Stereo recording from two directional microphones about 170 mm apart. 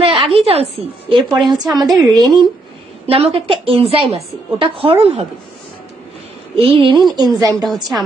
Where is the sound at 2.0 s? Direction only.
25° right (ahead or behind).